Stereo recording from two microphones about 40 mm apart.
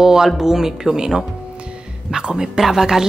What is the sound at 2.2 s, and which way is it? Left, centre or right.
Speech, centre.